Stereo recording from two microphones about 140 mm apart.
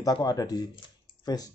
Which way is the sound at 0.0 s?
25° left (ahead or behind).